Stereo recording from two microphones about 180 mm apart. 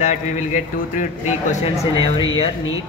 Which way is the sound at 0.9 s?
40° left (ahead or behind).